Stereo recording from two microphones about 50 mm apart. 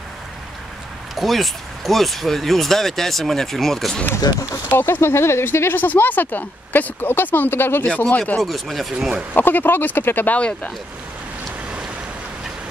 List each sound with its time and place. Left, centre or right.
1.1 s speech: centre
4.6 s speech: left
7.8 s speech: left
8.4 s speech: centre
9.3 s speech: left